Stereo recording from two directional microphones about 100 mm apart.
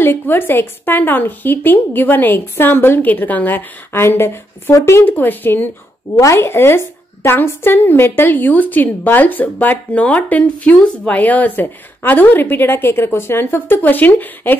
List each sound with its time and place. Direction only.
0.0 s speech: 20° left (ahead or behind)